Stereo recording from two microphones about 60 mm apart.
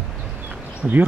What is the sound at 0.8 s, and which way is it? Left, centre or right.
Speech, centre.